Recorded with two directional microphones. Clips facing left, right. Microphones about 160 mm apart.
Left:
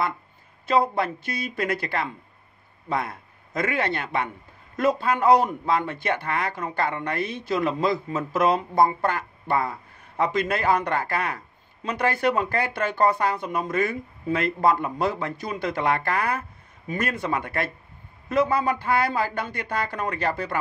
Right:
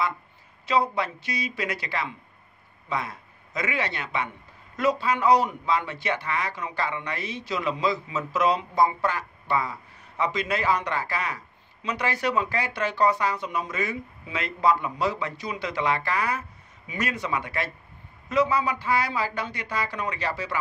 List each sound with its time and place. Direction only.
0.7 s a man's voice: 50° left (ahead or behind)